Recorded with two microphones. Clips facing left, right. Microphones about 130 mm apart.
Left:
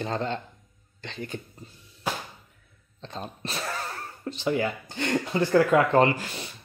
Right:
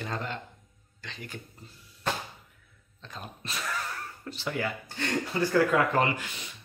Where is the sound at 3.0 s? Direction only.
30° left (ahead or behind).